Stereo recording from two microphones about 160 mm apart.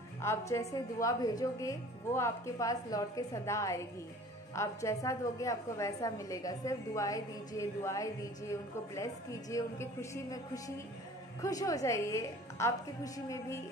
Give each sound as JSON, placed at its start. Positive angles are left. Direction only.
{"t": 0.2, "sound": "a woman's voice", "side_deg": 20}